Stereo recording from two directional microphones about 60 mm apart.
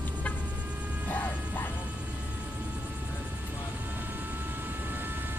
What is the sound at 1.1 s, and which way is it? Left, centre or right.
Music, left.